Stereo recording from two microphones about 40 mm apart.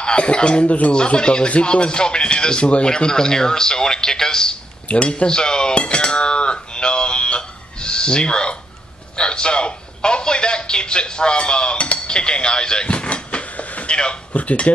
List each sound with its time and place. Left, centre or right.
0.0 s speech: left
0.9 s speech: left
4.8 s cutlery: left
9.1 s a man's voice: left